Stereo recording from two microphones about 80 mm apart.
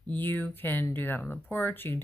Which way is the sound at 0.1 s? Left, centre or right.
Left.